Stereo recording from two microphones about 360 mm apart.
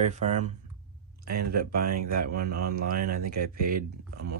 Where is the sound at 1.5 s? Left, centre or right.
Right.